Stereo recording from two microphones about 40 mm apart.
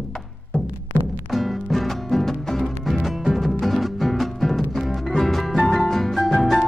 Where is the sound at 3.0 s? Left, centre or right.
Centre.